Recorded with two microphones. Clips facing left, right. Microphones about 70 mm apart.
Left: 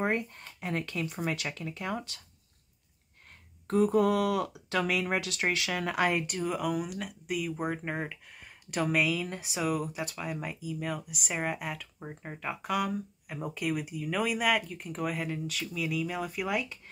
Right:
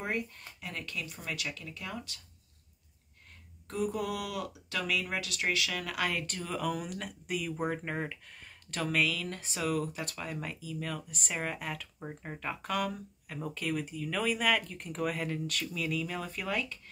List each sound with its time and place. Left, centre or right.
0.0 s speech: left
3.6 s speech: left; by 16.7 s centre